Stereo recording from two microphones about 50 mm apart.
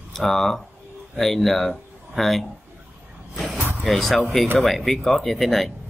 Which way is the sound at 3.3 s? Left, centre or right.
Centre.